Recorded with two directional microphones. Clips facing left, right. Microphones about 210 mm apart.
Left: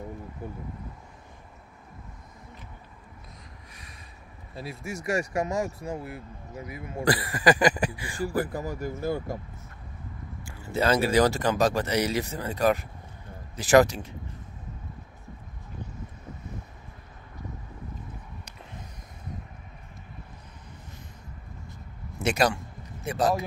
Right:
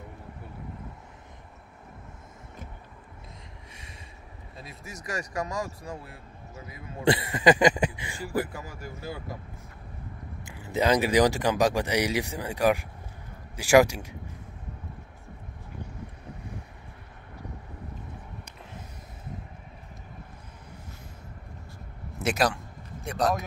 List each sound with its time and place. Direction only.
4.6 s speech: 30° left (ahead or behind)
7.1 s a sound: 25° right (ahead or behind)
8.5 s speech: 40° left (ahead or behind)
10.4 s speech: 15° right (ahead or behind)
22.2 s a man's voice: centre (ahead or behind)